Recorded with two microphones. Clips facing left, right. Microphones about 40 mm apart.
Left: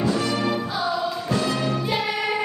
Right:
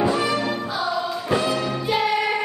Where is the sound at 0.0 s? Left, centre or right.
Centre.